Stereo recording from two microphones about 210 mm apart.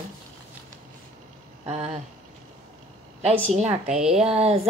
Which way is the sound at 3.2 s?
30° right (ahead or behind).